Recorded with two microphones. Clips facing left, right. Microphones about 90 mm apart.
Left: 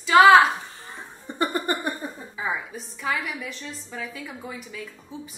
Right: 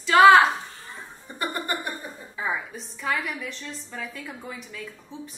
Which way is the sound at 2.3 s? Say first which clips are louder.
Right 1 dB; centre (ahead or behind).